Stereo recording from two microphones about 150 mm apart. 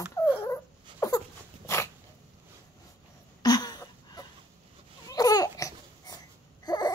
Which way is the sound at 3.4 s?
25° left (ahead or behind).